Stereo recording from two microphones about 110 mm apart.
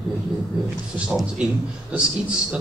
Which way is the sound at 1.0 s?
10° right (ahead or behind).